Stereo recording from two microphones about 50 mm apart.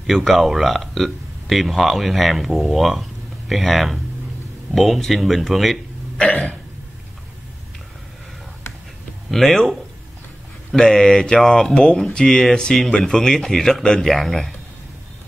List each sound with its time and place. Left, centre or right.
0.0 s speech: centre
6.1 s cough: left
9.3 s speech: centre